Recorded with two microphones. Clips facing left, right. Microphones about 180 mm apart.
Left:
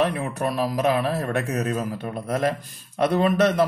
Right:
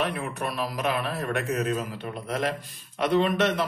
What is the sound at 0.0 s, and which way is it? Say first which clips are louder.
A man's voice: left 5 dB; 40° left (ahead or behind).